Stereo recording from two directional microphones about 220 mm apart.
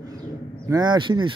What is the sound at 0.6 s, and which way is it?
Speech, 20° right (ahead or behind).